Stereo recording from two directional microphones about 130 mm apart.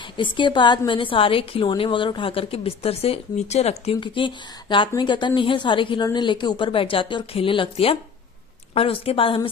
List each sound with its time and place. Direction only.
0.2 s a woman's voice: 40° left (ahead or behind)